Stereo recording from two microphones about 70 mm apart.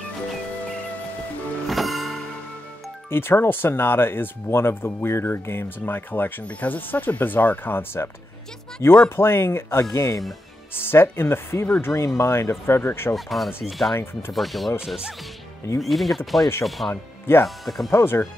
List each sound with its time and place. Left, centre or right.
1.7 s music: centre
3.1 s speech: left
8.8 s speech: left
9.1 s speech: left
13.1 s speech: centre
15.8 s speech: centre
16.9 s speech: left
17.6 s speech: centre
17.9 s speech: left